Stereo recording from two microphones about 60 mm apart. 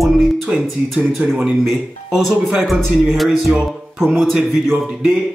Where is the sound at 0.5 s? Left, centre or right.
Centre.